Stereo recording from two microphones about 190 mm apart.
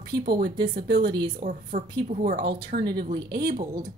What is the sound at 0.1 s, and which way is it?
Speech, 55° right (ahead or behind).